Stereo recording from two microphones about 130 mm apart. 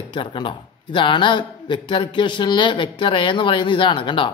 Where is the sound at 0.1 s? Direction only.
40° left (ahead or behind).